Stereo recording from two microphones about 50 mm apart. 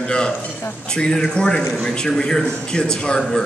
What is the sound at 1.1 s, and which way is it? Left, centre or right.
A man's voice, centre.